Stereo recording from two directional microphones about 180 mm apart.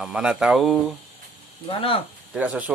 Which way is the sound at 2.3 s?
10° right (ahead or behind).